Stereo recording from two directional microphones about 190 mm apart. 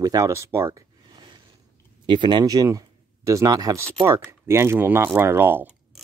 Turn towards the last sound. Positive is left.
turn(degrees=-10)  # may be behind; listen again after turning